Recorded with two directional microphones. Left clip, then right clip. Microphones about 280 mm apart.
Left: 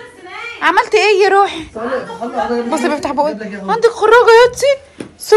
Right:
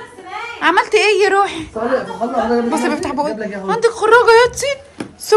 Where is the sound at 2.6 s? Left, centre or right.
Centre.